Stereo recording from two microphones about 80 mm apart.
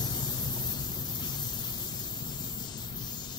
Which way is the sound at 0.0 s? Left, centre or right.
Left.